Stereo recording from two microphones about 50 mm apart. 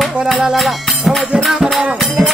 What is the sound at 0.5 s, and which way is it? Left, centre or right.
Music, centre.